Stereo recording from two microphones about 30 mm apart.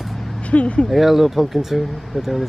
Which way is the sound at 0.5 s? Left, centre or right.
Left.